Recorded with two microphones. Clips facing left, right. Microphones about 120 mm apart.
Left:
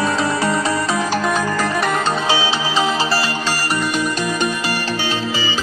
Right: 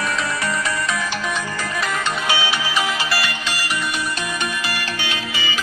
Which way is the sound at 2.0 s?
30° left (ahead or behind).